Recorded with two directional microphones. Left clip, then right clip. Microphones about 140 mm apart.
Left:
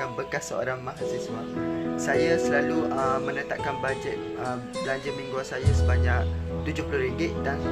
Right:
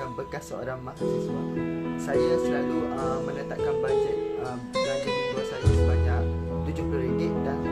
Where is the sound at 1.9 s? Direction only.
15° left (ahead or behind).